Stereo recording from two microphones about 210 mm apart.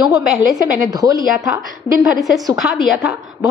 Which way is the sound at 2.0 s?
Centre (ahead or behind).